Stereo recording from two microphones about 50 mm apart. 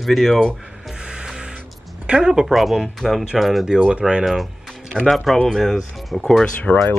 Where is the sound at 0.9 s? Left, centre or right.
Centre.